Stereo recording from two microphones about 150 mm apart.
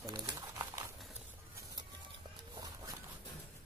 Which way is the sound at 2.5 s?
25° right (ahead or behind).